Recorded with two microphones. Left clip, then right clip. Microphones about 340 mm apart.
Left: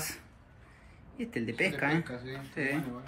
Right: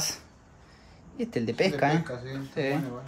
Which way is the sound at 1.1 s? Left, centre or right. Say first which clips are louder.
Right 5 dB; right.